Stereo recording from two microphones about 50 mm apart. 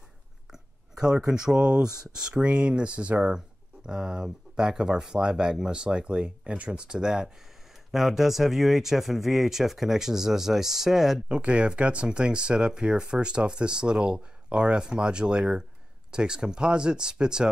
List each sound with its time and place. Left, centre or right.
0.5 s a sound: centre
1.3 s speech: centre
11.2 s speech: right